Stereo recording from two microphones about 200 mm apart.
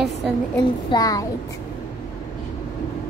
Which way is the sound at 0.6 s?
20° left (ahead or behind).